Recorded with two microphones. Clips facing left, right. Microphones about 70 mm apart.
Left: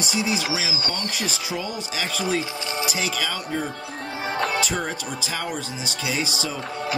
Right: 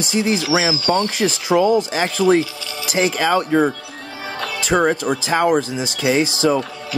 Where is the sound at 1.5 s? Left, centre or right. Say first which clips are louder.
Right 17 dB; right.